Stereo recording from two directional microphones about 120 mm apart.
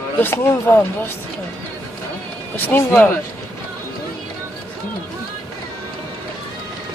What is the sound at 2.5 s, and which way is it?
Speech, 15° left (ahead or behind).